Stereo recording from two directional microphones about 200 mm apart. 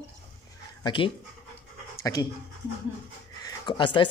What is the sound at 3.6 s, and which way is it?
Speech, 25° left (ahead or behind).